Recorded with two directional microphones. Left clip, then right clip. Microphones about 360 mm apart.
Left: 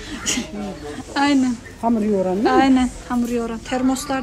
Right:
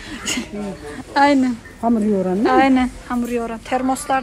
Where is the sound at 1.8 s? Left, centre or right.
Right.